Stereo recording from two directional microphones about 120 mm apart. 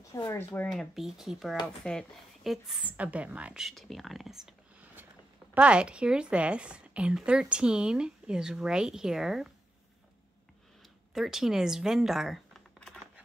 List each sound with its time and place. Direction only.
0.1 s speech: 25° left (ahead or behind)
0.6 s a woman's voice: 5° left (ahead or behind)
11.1 s speech: 5° right (ahead or behind)